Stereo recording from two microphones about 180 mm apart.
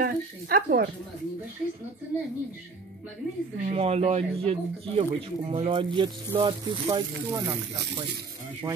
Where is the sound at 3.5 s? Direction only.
40° right (ahead or behind).